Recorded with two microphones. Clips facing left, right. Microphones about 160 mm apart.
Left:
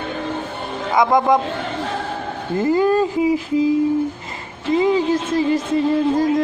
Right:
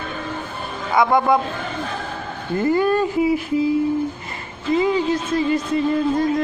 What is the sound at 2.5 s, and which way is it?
Speech, 20° left (ahead or behind).